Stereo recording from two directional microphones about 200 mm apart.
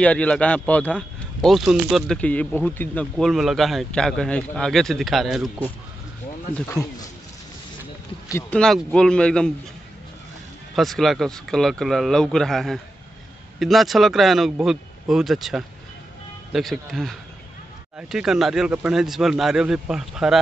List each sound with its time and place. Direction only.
0.0 s speech: 5° left (ahead or behind)
6.8 s speech: 15° left (ahead or behind)
8.3 s speech: 10° left (ahead or behind)
10.8 s speech: centre (ahead or behind)